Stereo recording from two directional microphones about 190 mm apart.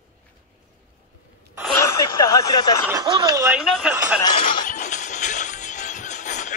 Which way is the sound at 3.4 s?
5° right (ahead or behind).